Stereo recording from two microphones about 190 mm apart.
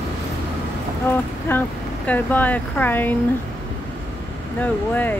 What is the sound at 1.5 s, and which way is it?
Vehicle, 15° left (ahead or behind).